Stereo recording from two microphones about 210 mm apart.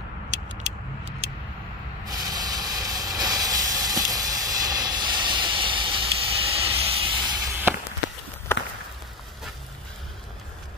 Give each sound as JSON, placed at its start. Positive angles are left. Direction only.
{"t": 2.0, "sound": "hiss", "side_deg": -20}
{"t": 7.7, "sound": "a sound", "side_deg": -10}
{"t": 8.5, "sound": "walk", "side_deg": 10}